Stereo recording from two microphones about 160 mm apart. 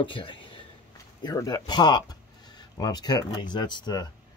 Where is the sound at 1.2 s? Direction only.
25° left (ahead or behind).